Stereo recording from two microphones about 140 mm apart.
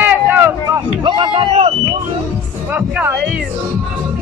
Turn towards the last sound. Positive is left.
turn(degrees=-10)  # may be behind; listen again after turning